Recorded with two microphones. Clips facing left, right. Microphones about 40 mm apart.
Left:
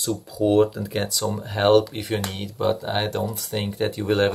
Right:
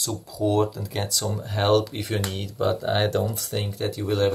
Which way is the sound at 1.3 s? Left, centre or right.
Centre.